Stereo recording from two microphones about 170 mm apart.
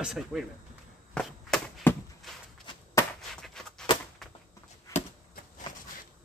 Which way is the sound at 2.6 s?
30° left (ahead or behind).